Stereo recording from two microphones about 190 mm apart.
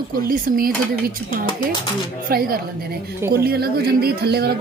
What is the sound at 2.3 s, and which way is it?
Speech, 50° right (ahead or behind).